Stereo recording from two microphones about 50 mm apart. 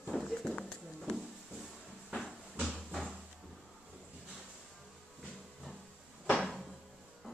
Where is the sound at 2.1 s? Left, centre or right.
Centre.